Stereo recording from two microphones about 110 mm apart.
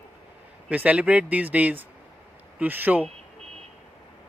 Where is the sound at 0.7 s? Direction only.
10° right (ahead or behind).